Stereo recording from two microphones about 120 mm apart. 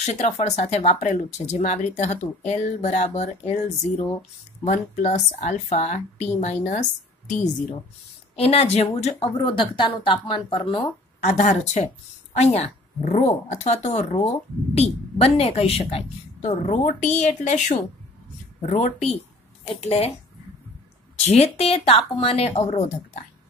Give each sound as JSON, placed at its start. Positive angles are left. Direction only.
{"t": 0.0, "sound": "speech", "side_deg": 65}
{"t": 4.6, "sound": "speech", "side_deg": 85}
{"t": 8.4, "sound": "speech", "side_deg": 60}
{"t": 11.2, "sound": "a woman's voice", "side_deg": 70}
{"t": 19.7, "sound": "a woman's voice", "side_deg": 55}
{"t": 21.3, "sound": "a woman's voice", "side_deg": 55}